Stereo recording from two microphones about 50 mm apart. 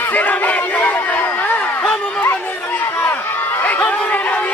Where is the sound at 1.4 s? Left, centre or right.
Left.